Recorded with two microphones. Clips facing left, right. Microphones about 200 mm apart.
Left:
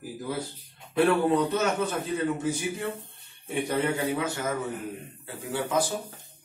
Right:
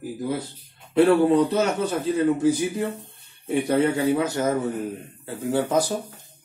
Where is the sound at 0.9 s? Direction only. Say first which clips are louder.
Right 6 dB; 35° right (ahead or behind).